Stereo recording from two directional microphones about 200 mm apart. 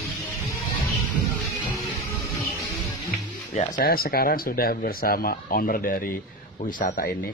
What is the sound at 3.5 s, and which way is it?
Speech, 45° left (ahead or behind).